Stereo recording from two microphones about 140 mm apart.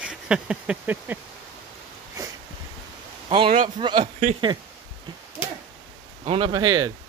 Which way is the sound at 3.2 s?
40° right (ahead or behind).